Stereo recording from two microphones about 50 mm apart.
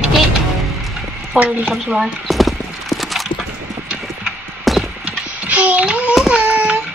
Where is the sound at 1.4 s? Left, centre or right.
Right.